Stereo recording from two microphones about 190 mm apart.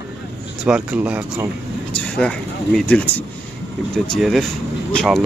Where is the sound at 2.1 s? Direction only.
5° left (ahead or behind).